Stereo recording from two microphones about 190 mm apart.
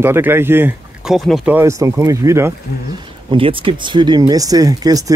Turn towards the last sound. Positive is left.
turn(degrees=-20)  # may be behind; listen again after turning